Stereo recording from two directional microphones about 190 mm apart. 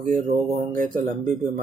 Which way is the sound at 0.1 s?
45° right (ahead or behind).